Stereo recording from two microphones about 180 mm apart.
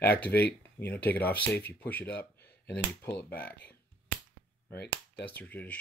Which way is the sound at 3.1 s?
55° left (ahead or behind).